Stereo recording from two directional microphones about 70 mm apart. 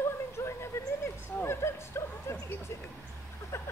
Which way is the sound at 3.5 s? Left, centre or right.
Left.